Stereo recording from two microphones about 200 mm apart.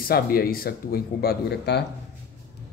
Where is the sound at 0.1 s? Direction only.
50° left (ahead or behind).